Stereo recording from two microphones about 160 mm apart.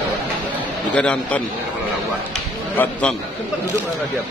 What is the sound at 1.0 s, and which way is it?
Speech, 10° left (ahead or behind).